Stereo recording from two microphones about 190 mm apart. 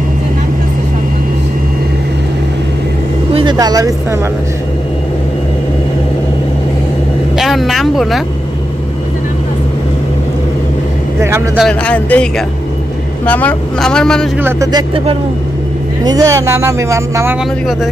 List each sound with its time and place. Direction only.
3.3 s vehicle: 20° right (ahead or behind)
7.3 s speech: centre (ahead or behind)
11.1 s speech: 15° right (ahead or behind)
11.5 s speech: 5° left (ahead or behind)
14.4 s speech: 20° right (ahead or behind)